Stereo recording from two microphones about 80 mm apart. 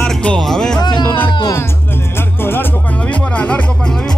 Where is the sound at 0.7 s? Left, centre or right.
Left.